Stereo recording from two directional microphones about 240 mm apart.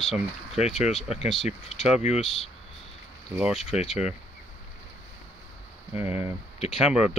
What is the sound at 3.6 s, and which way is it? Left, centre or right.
Speech, left.